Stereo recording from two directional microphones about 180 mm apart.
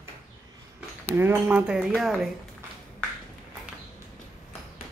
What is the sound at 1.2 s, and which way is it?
Speech, 10° right (ahead or behind).